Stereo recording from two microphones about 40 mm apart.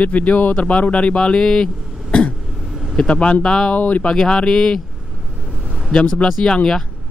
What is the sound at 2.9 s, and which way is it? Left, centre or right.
Speech, left.